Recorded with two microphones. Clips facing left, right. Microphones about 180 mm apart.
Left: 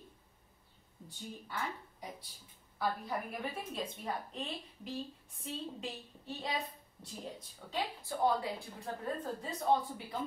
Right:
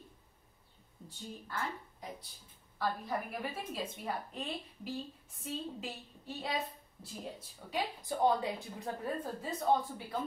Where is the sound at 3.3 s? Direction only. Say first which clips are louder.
Even; 5° right (ahead or behind).